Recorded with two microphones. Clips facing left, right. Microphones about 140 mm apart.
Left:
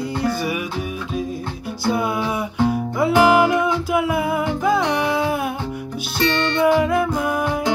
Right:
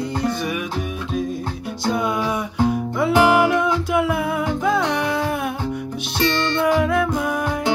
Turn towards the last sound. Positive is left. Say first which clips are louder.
# left 1 dB
turn(degrees=5)  # may be behind; listen again after turning